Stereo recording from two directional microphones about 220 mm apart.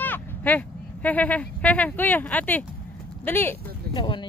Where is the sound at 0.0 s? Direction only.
10° left (ahead or behind).